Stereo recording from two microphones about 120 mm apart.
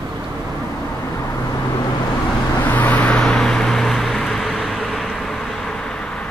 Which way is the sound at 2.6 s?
15° left (ahead or behind).